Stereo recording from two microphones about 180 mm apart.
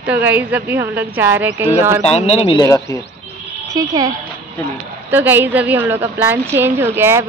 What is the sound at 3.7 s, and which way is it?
A woman's voice, 20° right (ahead or behind).